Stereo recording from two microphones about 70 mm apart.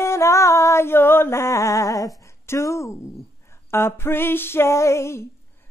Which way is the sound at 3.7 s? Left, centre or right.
Left.